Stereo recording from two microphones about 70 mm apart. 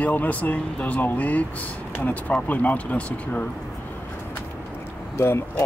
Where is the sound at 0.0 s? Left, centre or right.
Left.